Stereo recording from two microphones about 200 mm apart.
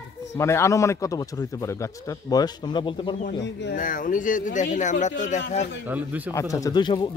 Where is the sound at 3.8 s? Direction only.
40° left (ahead or behind).